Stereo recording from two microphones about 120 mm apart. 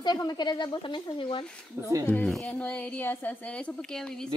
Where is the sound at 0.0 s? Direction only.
35° left (ahead or behind).